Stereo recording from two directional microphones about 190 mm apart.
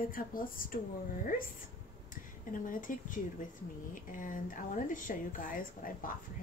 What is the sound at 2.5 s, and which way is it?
A woman's voice, 45° left (ahead or behind).